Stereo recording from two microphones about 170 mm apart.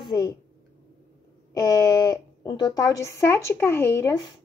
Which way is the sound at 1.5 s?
20° left (ahead or behind).